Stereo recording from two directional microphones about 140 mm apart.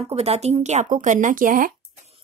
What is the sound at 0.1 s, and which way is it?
Speech, 50° right (ahead or behind).